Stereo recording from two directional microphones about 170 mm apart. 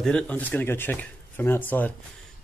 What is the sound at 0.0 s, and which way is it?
Speech, 10° left (ahead or behind).